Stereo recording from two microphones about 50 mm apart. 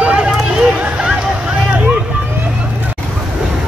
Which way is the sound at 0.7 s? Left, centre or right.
Right.